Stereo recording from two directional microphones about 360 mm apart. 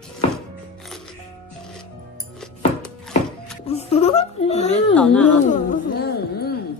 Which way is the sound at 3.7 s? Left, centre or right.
Centre.